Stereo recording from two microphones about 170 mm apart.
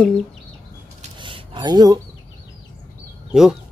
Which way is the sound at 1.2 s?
30° right (ahead or behind).